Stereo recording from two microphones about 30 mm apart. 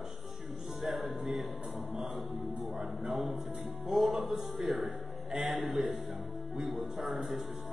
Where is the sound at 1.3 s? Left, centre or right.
Centre.